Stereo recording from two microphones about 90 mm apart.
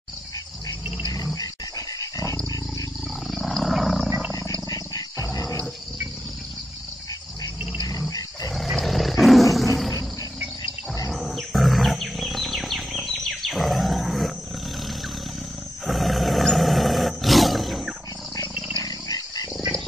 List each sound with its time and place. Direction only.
1.0 s dog: 40° left (ahead or behind)
3.3 s wild animals: centre (ahead or behind)
4.6 s wild animals: 45° left (ahead or behind)
5.3 s a sound: 40° left (ahead or behind)
8.5 s roar: centre (ahead or behind)
11.1 s wild animals: centre (ahead or behind)
15.8 s roar: centre (ahead or behind)
18.8 s a sound: 45° left (ahead or behind)